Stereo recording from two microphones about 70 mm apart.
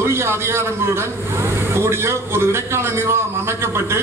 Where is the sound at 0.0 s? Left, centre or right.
Right.